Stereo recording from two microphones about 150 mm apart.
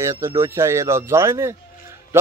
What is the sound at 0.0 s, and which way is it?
Speech, 20° right (ahead or behind).